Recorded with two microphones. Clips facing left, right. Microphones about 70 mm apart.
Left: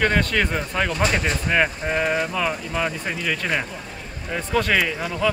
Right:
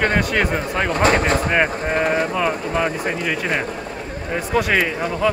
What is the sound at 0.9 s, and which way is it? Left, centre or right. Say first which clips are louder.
Speech: right 9 dB; right.